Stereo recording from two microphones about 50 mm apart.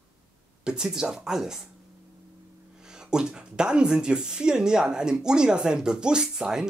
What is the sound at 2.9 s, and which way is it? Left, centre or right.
Speech, centre.